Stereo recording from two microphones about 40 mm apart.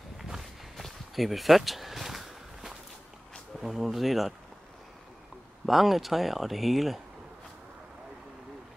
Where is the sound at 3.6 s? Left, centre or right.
Centre.